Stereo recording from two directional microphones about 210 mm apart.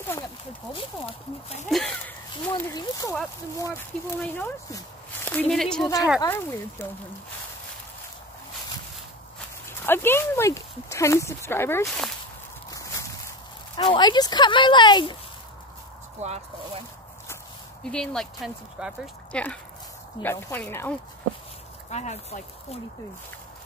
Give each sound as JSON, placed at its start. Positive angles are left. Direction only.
{"t": 1.7, "sound": "speech", "side_deg": 5}
{"t": 2.7, "sound": "speech", "side_deg": 15}
{"t": 4.2, "sound": "speech", "side_deg": 10}
{"t": 6.2, "sound": "speech", "side_deg": 10}
{"t": 9.7, "sound": "speech", "side_deg": 10}
{"t": 13.7, "sound": "speech", "side_deg": 20}
{"t": 16.2, "sound": "speech", "side_deg": -30}
{"t": 17.8, "sound": "speech", "side_deg": 5}
{"t": 20.2, "sound": "speech", "side_deg": 10}
{"t": 21.9, "sound": "speech", "side_deg": 30}